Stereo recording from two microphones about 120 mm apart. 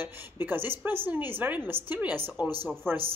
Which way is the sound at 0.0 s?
15° right (ahead or behind).